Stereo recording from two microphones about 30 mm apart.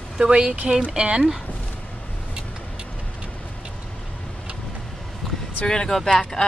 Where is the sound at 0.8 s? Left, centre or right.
Right.